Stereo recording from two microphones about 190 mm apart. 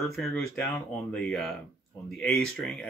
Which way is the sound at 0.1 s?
5° left (ahead or behind).